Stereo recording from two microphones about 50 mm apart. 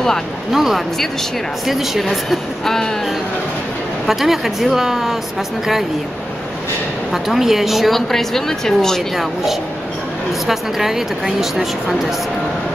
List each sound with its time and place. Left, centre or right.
0.5 s speech: centre
4.0 s speech: centre
7.1 s speech: centre
9.1 s speech: centre